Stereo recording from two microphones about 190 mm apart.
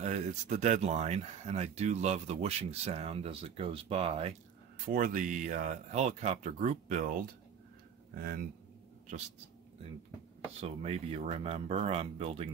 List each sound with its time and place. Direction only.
0.0 s speech: 35° right (ahead or behind)
4.8 s speech: 45° right (ahead or behind)
8.1 s speech: 55° right (ahead or behind)
10.6 s speech: 35° right (ahead or behind)